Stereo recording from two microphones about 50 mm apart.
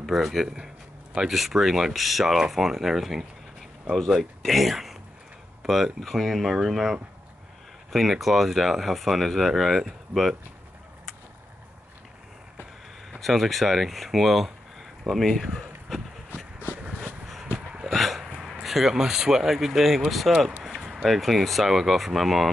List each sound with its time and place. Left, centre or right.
0.0 s speech: centre
13.2 s speech: centre
16.5 s a sound: right
17.9 s hiccup: centre
18.4 s speech: centre